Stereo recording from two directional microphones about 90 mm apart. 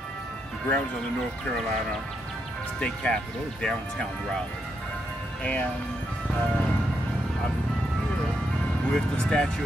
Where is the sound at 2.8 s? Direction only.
10° left (ahead or behind).